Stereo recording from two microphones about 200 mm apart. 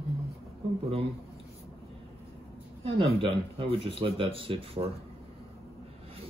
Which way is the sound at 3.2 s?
25° right (ahead or behind).